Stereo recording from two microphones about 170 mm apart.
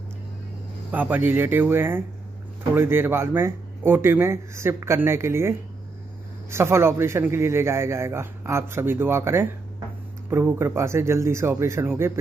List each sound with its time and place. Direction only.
0.9 s a man's voice: 10° right (ahead or behind)